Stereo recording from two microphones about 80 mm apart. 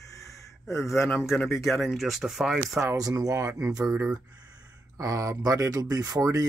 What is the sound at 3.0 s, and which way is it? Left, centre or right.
Speech, right.